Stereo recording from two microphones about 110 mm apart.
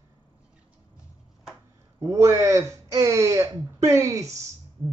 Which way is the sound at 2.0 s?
25° right (ahead or behind).